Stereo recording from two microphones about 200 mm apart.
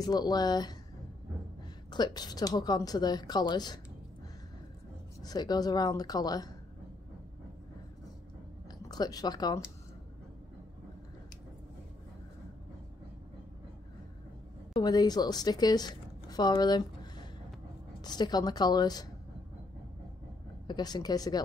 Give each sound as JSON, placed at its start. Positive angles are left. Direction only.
{"t": 0.0, "sound": "a woman's voice", "side_deg": 20}
{"t": 1.9, "sound": "a woman's voice", "side_deg": 20}
{"t": 5.2, "sound": "a woman's voice", "side_deg": 20}
{"t": 8.6, "sound": "a sound", "side_deg": 20}
{"t": 14.7, "sound": "a woman's voice", "side_deg": 20}
{"t": 20.6, "sound": "a woman's voice", "side_deg": 20}